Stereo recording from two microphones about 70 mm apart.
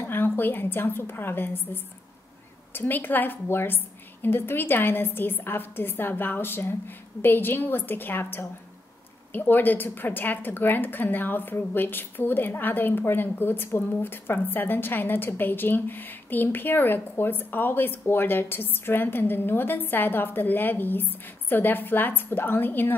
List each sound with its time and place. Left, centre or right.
0.0 s a woman's voice: left